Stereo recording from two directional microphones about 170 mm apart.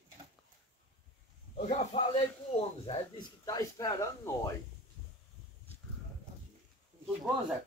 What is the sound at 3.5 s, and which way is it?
Speech, 20° left (ahead or behind).